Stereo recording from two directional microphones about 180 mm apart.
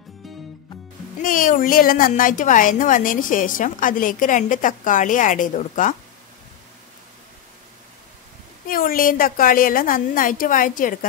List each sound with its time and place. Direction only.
1.2 s a woman's voice: 50° left (ahead or behind)
8.6 s a woman's voice: 50° left (ahead or behind)